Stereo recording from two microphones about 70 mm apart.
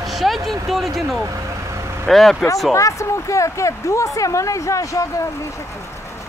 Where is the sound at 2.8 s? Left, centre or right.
Left.